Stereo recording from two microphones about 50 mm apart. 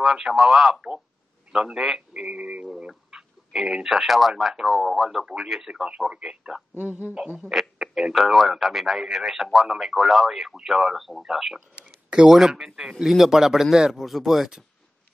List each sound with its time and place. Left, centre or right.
0.0 s speech: centre
2.0 s a sound: right
2.9 s speech: centre
5.9 s a man's voice: right
6.8 s speech: right
7.5 s speech: centre